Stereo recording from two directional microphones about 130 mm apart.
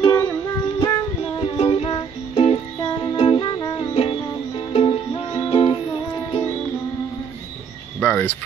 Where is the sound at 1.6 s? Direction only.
45° left (ahead or behind).